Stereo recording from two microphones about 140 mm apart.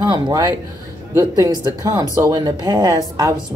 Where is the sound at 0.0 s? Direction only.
25° right (ahead or behind).